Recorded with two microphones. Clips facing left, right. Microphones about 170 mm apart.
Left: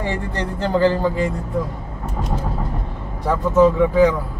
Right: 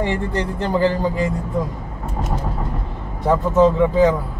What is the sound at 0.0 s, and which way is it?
Speech, 20° right (ahead or behind).